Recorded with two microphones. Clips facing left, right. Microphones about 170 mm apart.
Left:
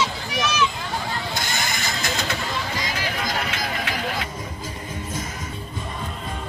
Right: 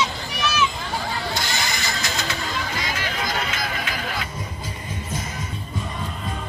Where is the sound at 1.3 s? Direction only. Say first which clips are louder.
Right 1 dB; 50° left (ahead or behind).